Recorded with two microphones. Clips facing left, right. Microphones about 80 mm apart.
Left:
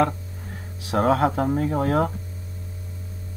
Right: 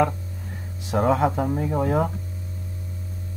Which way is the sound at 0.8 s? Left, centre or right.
Left.